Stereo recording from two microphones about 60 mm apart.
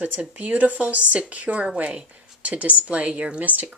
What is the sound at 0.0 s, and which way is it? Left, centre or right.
Speech, right.